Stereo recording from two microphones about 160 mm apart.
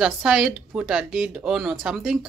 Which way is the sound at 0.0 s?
Centre (ahead or behind).